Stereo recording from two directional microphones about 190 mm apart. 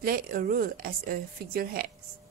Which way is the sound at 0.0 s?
50° right (ahead or behind).